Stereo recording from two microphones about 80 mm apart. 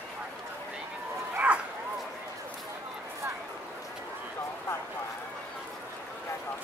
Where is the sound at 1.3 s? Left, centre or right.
Centre.